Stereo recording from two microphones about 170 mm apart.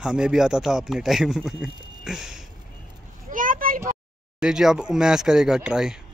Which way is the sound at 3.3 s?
50° right (ahead or behind).